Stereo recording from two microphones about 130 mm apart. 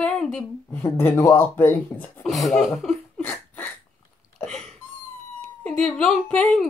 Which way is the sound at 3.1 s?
15° left (ahead or behind).